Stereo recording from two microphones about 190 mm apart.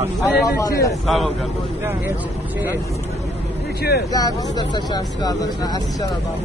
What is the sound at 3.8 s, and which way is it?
Speech, 55° left (ahead or behind).